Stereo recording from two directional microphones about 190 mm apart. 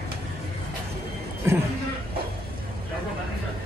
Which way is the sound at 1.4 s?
15° right (ahead or behind).